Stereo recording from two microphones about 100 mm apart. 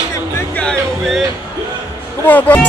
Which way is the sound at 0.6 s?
5° left (ahead or behind).